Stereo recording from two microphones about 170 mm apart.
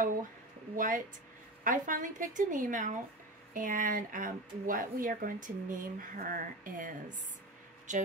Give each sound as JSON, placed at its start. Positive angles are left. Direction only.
{"t": 0.7, "sound": "speech", "side_deg": -55}
{"t": 7.9, "sound": "speech", "side_deg": -45}